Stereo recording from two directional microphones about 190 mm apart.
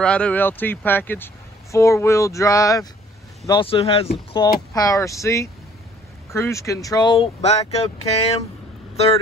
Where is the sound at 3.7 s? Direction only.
30° left (ahead or behind).